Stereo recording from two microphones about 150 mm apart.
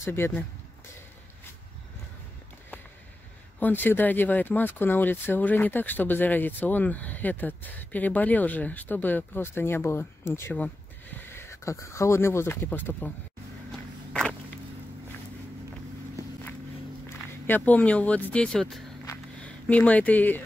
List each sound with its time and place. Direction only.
0.0 s speech: 15° left (ahead or behind)
3.5 s speech: 10° left (ahead or behind)
13.7 s walk: 5° left (ahead or behind)
17.5 s speech: 10° left (ahead or behind)